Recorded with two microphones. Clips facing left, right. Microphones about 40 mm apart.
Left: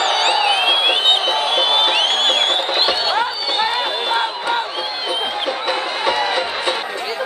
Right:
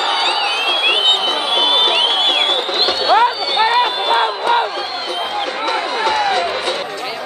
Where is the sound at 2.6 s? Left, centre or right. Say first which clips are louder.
Right 1 dB; centre.